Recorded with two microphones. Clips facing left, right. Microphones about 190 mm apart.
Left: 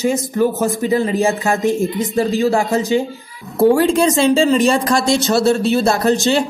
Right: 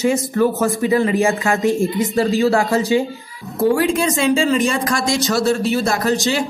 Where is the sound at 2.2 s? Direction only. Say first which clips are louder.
Even; 15° left (ahead or behind).